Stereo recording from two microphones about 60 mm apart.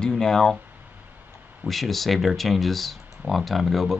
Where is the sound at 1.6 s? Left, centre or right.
Centre.